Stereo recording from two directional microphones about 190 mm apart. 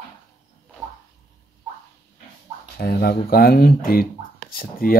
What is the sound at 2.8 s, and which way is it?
Speech, 55° left (ahead or behind).